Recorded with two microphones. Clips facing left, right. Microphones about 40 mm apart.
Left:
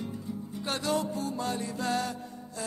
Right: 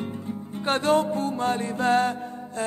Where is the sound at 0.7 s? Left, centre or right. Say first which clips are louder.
Right 9 dB; right.